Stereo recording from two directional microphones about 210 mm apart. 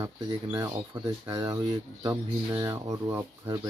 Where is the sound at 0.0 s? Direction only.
15° right (ahead or behind).